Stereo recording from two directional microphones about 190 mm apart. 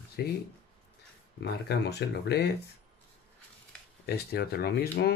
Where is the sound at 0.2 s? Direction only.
60° left (ahead or behind).